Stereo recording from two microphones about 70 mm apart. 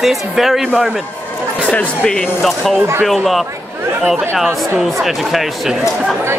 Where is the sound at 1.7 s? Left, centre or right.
Centre.